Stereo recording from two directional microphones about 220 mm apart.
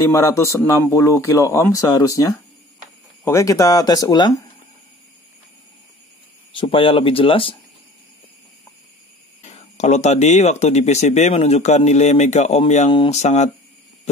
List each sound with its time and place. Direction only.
0.0 s speech: 15° left (ahead or behind)
6.5 s speech: 25° left (ahead or behind)
9.4 s speech: 30° left (ahead or behind)